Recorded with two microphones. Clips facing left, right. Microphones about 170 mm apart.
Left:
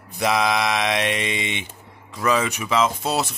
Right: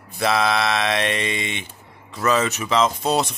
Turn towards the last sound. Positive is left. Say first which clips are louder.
# right 3 dB
turn(degrees=5)  # may be behind; listen again after turning